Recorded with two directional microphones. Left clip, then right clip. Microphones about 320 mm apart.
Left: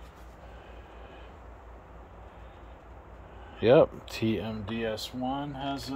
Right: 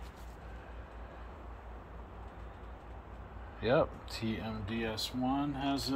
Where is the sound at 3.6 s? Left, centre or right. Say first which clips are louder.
Left 9 dB; left.